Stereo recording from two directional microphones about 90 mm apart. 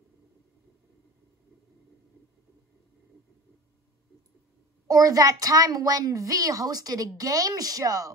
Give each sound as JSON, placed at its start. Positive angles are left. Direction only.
{"t": 4.8, "sound": "a child's voice", "side_deg": -45}